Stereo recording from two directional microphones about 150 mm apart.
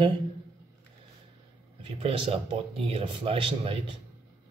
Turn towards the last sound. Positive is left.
turn(degrees=-35)  # may be behind; listen again after turning